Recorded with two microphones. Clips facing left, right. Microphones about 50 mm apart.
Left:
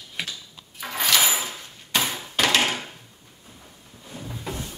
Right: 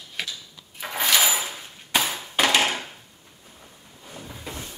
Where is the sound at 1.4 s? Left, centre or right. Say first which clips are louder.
Even; centre.